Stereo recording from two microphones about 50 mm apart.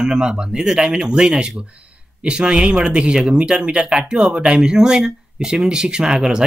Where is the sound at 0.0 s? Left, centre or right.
Centre.